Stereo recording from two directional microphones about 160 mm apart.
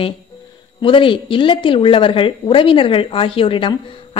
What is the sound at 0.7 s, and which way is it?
Speech, 30° left (ahead or behind).